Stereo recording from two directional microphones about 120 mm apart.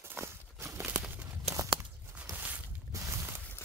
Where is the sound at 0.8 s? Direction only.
10° right (ahead or behind).